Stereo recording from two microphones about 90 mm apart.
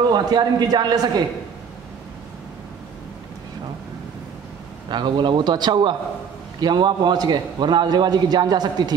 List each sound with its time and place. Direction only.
0.1 s a man's voice: 50° right (ahead or behind)
4.8 s a man's voice: 60° right (ahead or behind)